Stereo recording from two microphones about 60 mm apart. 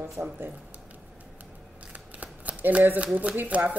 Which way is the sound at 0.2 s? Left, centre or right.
Right.